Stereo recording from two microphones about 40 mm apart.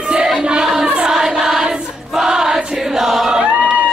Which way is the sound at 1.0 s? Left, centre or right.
Centre.